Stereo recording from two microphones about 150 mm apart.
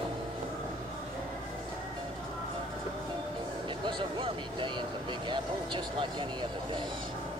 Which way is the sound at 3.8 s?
35° right (ahead or behind).